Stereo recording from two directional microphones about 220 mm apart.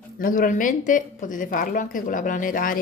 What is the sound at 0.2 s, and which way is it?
Speech, 40° left (ahead or behind).